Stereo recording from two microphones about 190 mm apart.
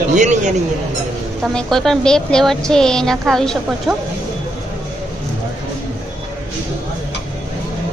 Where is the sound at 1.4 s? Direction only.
Centre (ahead or behind).